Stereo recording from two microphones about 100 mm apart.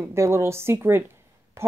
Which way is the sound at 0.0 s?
30° right (ahead or behind).